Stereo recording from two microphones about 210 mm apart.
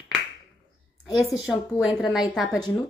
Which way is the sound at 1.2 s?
Centre (ahead or behind).